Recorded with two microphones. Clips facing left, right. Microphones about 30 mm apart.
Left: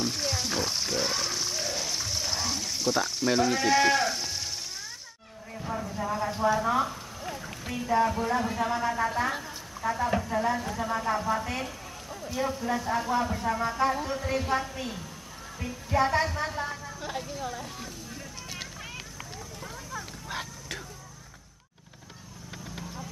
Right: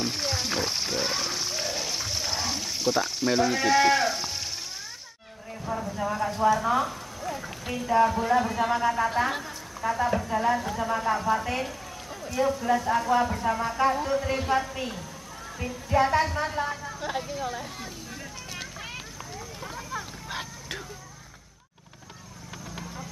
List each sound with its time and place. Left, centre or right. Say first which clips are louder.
0.0 s music: right 1 dB; centre
5.7 s vehicle: right 2 dB; centre
7.3 s speech: right 2 dB; centre
9.4 s a sound: right 2 dB; centre
10.2 s speech: right 3 dB; centre
12.6 s a woman's voice: right 4 dB; centre
20.2 s a sound: right 1 dB; centre